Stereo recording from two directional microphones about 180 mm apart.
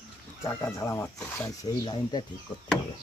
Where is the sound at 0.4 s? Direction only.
15° left (ahead or behind).